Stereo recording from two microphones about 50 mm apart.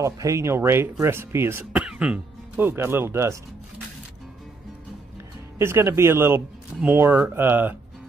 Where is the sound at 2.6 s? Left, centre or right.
Right.